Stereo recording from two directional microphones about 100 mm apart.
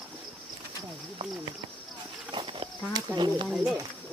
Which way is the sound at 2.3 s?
55° right (ahead or behind).